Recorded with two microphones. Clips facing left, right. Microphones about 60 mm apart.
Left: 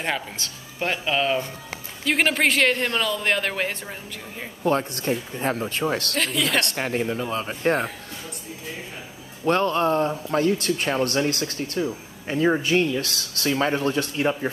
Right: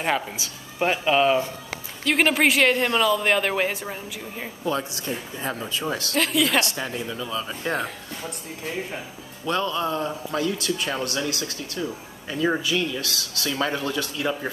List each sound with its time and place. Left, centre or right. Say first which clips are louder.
0.0 s a woman's voice: right 3 dB; centre
4.6 s speech: left 5 dB; left
6.1 s a woman's voice: right 7 dB; centre
6.6 s speech: left 3 dB; left
9.4 s speech: left 4 dB; left